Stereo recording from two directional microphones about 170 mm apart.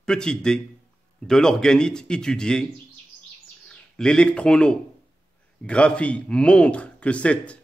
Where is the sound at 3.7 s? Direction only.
5° left (ahead or behind).